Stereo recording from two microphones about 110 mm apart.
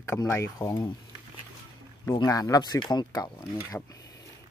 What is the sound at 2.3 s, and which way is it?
Speech, 35° left (ahead or behind).